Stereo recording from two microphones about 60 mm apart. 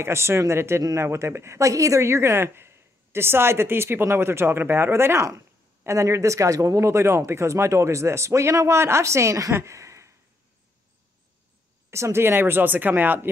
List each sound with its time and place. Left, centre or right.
0.0 s speech: right
5.9 s speech: right
9.6 s a sound: right
11.9 s speech: right